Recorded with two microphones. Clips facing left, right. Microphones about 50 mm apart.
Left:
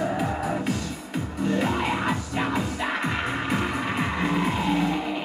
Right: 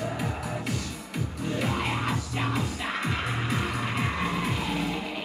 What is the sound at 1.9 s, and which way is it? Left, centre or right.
Music, left.